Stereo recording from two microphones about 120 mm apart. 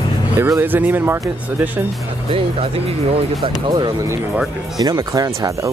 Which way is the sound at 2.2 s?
50° right (ahead or behind).